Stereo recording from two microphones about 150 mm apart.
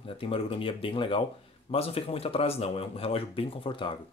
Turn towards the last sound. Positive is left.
turn(degrees=35)  # may be behind; listen again after turning